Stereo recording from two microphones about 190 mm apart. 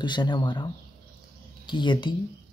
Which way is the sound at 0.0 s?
25° left (ahead or behind).